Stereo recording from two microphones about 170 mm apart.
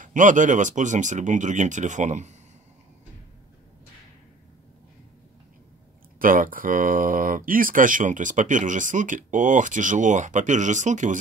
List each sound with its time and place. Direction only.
0.0 s speech: 50° right (ahead or behind)
6.1 s speech: 55° right (ahead or behind)